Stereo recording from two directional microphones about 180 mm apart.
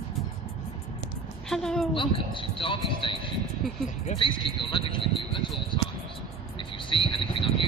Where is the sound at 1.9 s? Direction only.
30° left (ahead or behind).